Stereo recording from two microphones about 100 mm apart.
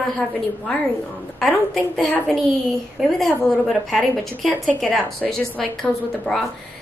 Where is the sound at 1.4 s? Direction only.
5° left (ahead or behind).